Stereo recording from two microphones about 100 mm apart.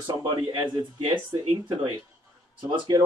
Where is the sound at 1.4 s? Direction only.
60° right (ahead or behind).